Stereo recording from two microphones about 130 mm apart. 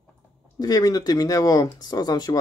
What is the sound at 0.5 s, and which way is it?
Speech, 30° left (ahead or behind).